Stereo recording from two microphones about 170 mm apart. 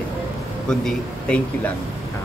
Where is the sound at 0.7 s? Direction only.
5° left (ahead or behind).